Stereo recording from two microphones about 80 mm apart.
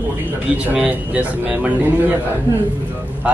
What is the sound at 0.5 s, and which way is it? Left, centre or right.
A man's voice, centre.